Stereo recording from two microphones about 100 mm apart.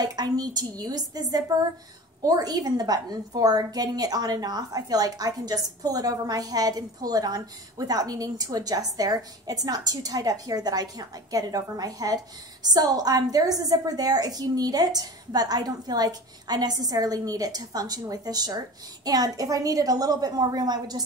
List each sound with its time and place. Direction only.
0.0 s a woman's voice: 40° right (ahead or behind)